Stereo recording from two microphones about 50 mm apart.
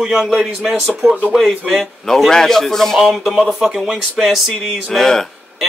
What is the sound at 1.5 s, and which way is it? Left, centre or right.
Speech, right.